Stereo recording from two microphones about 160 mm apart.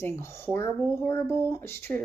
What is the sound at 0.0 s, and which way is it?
Speech, 15° left (ahead or behind).